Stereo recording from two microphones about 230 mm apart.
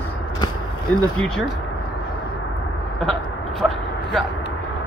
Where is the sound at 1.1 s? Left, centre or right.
Centre.